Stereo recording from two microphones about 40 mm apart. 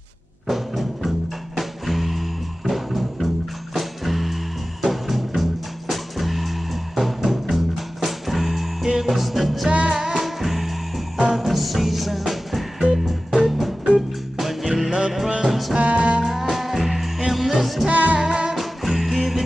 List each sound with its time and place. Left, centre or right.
0.5 s music: centre
9.7 s music: right
9.9 s music: centre
14.9 s music: right
15.4 s music: centre
15.8 s music: right
16.3 s music: centre
17.8 s music: right
18.2 s music: right
18.5 s music: centre